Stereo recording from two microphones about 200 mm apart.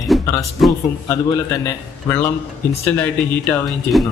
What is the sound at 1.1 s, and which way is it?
Speech, 15° left (ahead or behind).